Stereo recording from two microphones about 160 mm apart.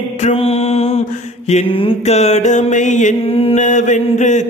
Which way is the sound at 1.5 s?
45° left (ahead or behind).